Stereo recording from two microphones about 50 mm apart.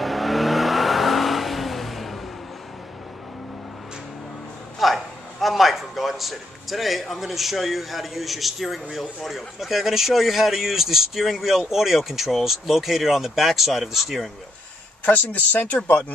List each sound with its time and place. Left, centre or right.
0.0 s vehicle: centre
4.7 s a man's voice: centre
15.0 s speech: left